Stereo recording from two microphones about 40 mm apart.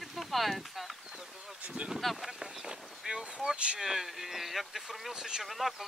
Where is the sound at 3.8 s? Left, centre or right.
Centre.